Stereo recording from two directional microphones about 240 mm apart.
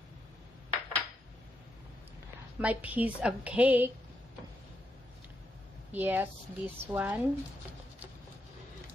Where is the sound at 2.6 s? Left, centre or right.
Centre.